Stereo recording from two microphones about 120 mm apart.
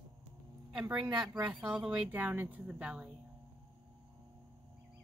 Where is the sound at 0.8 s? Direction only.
10° right (ahead or behind).